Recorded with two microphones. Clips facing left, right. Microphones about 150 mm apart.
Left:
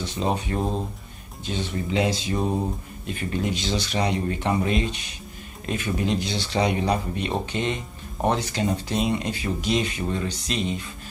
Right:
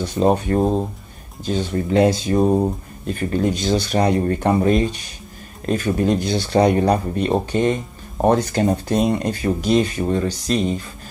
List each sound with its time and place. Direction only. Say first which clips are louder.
0.0 s speech: right 8 dB; 50° right (ahead or behind)